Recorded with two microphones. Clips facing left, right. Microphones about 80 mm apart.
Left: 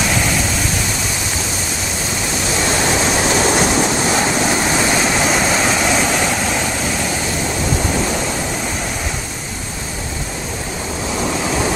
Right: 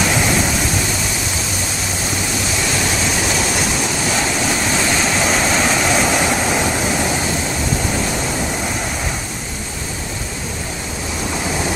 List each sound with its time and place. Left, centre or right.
3.4 s waves: left
5.2 s vehicle: centre